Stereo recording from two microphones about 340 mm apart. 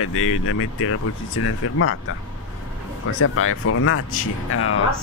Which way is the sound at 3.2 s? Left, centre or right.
Left.